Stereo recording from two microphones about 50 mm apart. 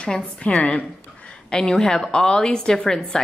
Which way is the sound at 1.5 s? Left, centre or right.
Centre.